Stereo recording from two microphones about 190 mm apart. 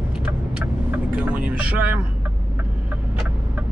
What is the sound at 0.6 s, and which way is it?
Speech, 10° right (ahead or behind).